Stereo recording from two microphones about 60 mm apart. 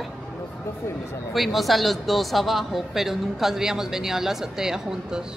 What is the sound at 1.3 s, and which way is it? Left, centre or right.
Speech, centre.